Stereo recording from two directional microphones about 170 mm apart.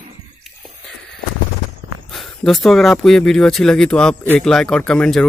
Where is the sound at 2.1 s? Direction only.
Centre (ahead or behind).